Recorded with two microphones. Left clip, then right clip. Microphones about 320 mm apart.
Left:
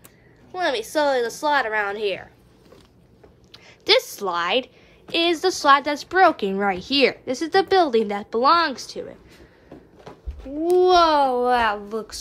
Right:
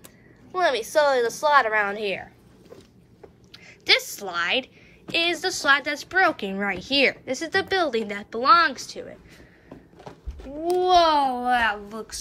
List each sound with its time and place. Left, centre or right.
0.5 s a woman's voice: centre
3.5 s a woman's voice: centre
10.4 s babbling: right
10.9 s a child's voice: centre